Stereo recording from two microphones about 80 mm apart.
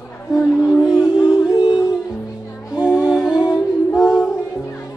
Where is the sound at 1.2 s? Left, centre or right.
Left.